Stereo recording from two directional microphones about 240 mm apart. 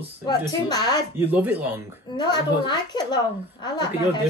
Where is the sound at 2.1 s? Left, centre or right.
Centre.